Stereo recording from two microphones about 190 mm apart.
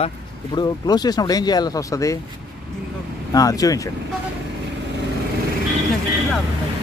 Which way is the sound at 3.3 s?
20° left (ahead or behind).